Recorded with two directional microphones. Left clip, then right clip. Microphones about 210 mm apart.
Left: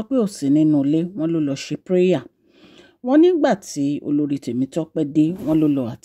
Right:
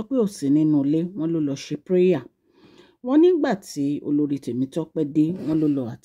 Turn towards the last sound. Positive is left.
turn(degrees=20)  # may be behind; listen again after turning